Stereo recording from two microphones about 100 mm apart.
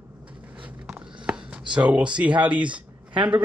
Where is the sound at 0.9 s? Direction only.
10° right (ahead or behind).